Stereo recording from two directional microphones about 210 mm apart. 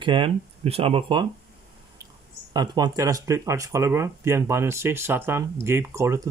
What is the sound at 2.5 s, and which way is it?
Speech, 20° right (ahead or behind).